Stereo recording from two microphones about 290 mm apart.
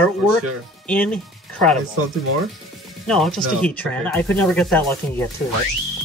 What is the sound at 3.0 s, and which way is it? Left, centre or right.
Speech, centre.